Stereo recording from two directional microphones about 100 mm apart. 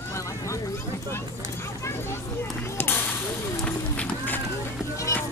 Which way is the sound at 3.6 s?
10° left (ahead or behind).